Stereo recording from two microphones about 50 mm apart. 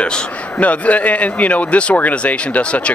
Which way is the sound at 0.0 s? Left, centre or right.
Left.